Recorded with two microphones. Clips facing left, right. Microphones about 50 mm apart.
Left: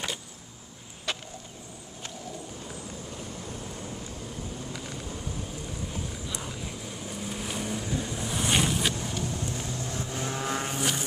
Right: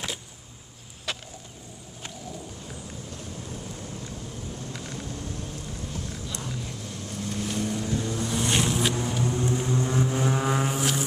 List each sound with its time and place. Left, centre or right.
1.1 s vehicle: centre
2.7 s vehicle: centre
4.7 s thunder: centre
5.9 s vehicle: centre
9.2 s vehicle: right; by 11.1 s centre